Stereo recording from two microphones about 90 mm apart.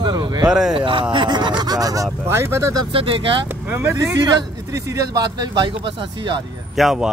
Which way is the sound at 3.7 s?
20° right (ahead or behind).